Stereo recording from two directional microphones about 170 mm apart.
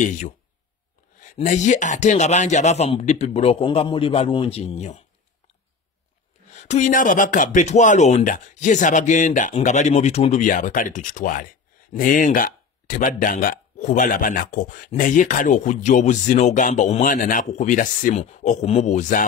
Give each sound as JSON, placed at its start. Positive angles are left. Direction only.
{"t": 0.0, "sound": "speech", "side_deg": 50}
{"t": 6.5, "sound": "speech", "side_deg": 40}